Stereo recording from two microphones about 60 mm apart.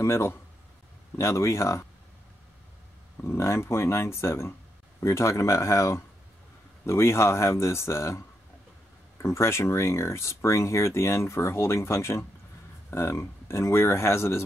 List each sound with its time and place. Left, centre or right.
0.0 s speech: left
3.3 s speech: left
9.2 s speech: left